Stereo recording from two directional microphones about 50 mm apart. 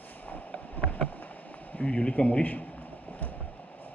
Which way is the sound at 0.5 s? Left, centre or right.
Left.